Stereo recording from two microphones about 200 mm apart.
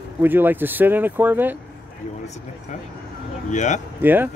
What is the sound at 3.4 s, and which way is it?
Speech, 35° left (ahead or behind).